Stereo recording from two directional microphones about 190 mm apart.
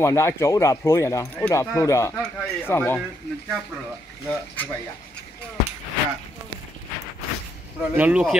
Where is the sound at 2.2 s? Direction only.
10° left (ahead or behind).